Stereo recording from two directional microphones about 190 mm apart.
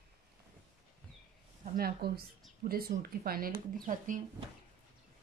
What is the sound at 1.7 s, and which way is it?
Speech, 55° right (ahead or behind).